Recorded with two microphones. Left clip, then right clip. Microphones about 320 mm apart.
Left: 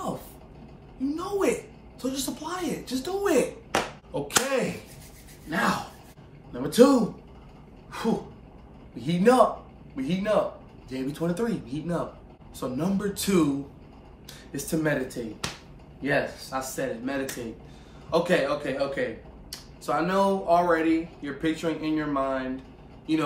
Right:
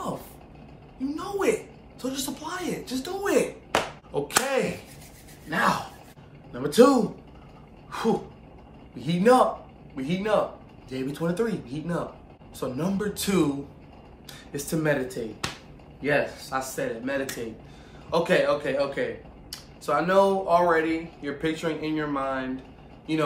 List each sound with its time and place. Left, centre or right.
0.9 s a woman's voice: centre
14.5 s speech: centre